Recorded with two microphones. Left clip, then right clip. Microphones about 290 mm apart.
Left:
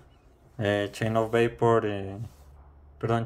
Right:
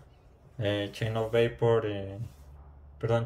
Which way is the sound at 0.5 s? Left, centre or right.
Centre.